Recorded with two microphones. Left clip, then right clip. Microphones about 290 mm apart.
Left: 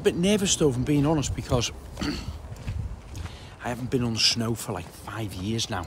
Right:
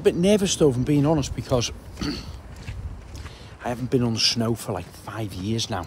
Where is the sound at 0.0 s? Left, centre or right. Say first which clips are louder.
Right 4 dB; centre.